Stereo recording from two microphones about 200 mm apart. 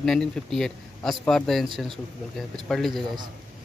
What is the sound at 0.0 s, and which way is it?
Speech, centre (ahead or behind).